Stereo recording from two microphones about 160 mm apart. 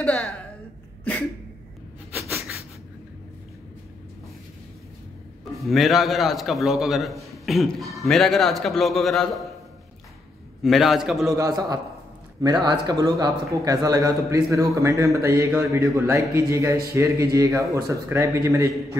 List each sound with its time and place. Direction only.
0.0 s a woman's voice: 5° left (ahead or behind)
5.5 s a man's voice: centre (ahead or behind)
10.6 s a man's voice: centre (ahead or behind)
11.2 s a man's voice: 20° right (ahead or behind)